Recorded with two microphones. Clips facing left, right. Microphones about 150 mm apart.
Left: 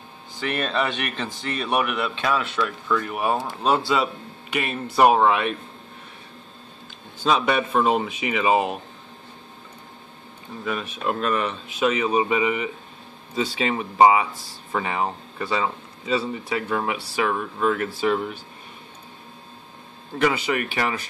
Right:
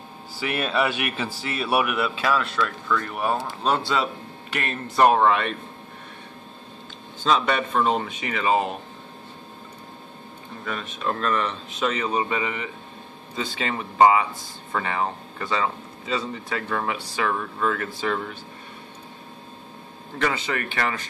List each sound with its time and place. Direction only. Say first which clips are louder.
0.4 s a man's voice: right 1 dB; 5° right (ahead or behind)
7.2 s speech: left 1 dB; 10° left (ahead or behind)
10.6 s speech: left 3 dB; 15° left (ahead or behind)
20.2 s speech: left 4 dB; 10° left (ahead or behind)